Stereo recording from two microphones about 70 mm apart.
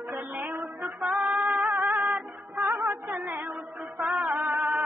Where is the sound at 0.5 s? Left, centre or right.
Right.